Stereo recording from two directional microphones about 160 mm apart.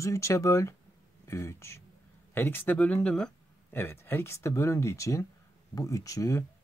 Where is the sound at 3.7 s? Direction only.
15° left (ahead or behind).